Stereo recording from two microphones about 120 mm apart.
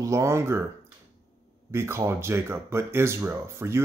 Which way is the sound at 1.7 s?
20° right (ahead or behind).